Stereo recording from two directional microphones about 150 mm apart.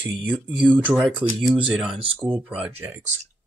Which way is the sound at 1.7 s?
Centre (ahead or behind).